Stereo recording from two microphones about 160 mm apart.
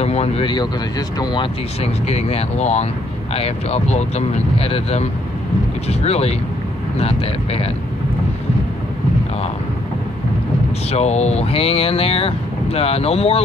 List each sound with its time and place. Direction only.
0.0 s speech: 40° left (ahead or behind)
10.9 s speech: 40° left (ahead or behind)